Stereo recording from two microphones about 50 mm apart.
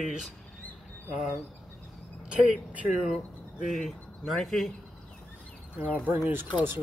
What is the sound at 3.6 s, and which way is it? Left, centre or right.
Speech, centre.